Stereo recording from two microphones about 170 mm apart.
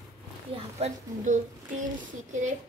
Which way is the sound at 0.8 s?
50° right (ahead or behind).